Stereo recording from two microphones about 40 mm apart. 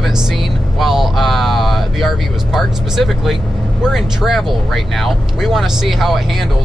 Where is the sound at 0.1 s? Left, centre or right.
Centre.